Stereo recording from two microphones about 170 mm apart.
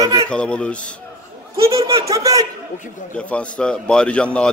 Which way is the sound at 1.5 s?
20° right (ahead or behind).